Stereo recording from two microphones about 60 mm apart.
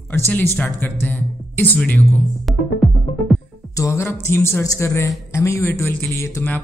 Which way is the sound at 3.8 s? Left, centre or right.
Left.